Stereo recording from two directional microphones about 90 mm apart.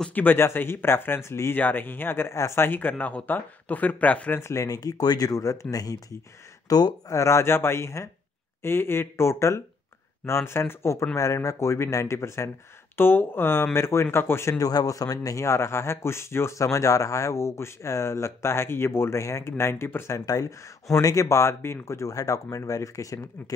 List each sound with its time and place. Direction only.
0.1 s speech: 20° left (ahead or behind)
4.4 s a man's voice: 35° left (ahead or behind)
14.6 s a man's voice: 45° left (ahead or behind); by 20.2 s 25° left (ahead or behind)
20.2 s a man's voice: 40° left (ahead or behind)